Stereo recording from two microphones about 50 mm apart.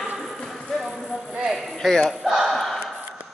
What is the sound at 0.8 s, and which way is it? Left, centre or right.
Clip-clop, centre.